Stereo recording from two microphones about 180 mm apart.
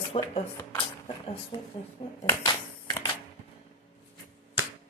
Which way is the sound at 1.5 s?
25° left (ahead or behind).